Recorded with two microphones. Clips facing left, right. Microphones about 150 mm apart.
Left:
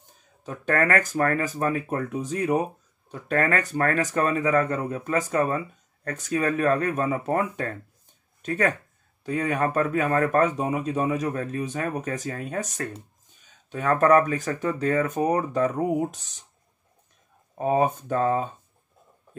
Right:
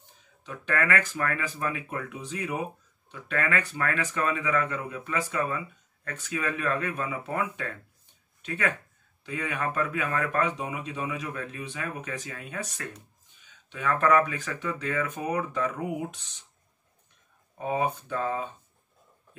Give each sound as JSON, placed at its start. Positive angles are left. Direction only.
{"t": 0.4, "sound": "speech", "side_deg": 40}
{"t": 17.6, "sound": "speech", "side_deg": 40}